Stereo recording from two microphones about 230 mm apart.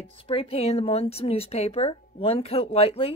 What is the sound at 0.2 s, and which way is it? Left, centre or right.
Speech, left.